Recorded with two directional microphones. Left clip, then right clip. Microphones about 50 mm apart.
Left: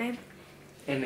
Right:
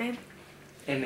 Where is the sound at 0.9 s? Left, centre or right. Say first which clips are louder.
Even; centre.